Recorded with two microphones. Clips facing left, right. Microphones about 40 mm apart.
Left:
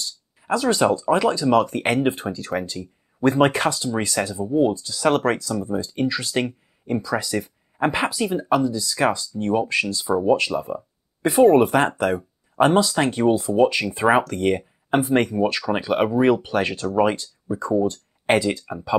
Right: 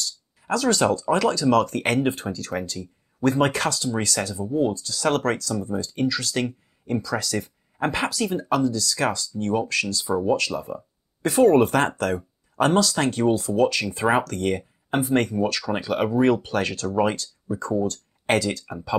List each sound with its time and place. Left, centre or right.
0.0 s a sound: left
1.0 s speech: centre
4.7 s speech: left
17.1 s speech: left